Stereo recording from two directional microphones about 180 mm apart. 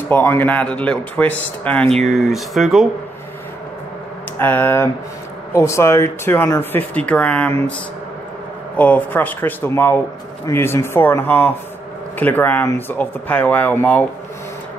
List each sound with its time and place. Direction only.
0.1 s speech: 10° left (ahead or behind)
1.9 s speech: 35° right (ahead or behind)
2.1 s speech: centre (ahead or behind)
4.4 s speech: 10° left (ahead or behind)
8.7 s speech: 10° left (ahead or behind)